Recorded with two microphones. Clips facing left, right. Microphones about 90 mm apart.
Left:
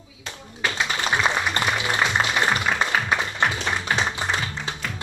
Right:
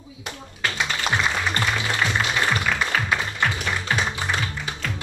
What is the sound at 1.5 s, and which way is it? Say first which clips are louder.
Music: left 1 dB; 20° left (ahead or behind).